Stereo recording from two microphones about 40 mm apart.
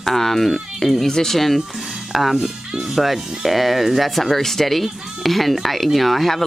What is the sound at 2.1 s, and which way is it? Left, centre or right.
Speech, centre.